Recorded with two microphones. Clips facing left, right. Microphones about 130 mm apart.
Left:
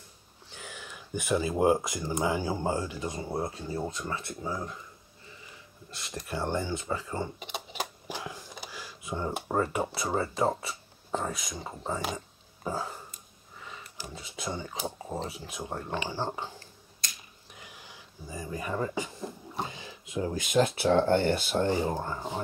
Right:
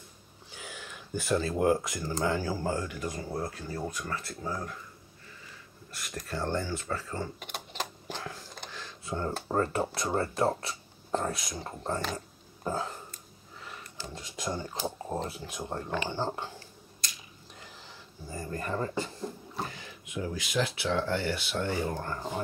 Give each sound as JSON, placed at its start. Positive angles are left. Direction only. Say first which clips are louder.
{"t": 0.5, "sound": "a sound", "louder": "even", "side_deg": 0}
{"t": 1.1, "sound": "speech", "louder": "left 1 dB", "side_deg": 10}
{"t": 1.6, "sound": "speech", "louder": "left 2 dB", "side_deg": 20}
{"t": 5.9, "sound": "speech", "louder": "left 1 dB", "side_deg": 25}
{"t": 12.6, "sound": "a sound", "louder": "right 1 dB", "side_deg": 5}
{"t": 13.9, "sound": "speech", "louder": "right 2 dB", "side_deg": 15}
{"t": 14.2, "sound": "speech", "louder": "right 1 dB", "side_deg": 0}
{"t": 17.6, "sound": "a sound", "louder": "left 1 dB", "side_deg": 10}
{"t": 20.3, "sound": "speech", "louder": "left 7 dB", "side_deg": 45}
{"t": 21.5, "sound": "speech", "louder": "left 2 dB", "side_deg": 25}